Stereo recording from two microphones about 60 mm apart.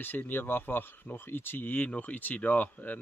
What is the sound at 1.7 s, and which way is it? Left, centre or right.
Speech, left.